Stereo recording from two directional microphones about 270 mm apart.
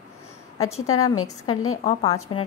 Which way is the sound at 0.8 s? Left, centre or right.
Left.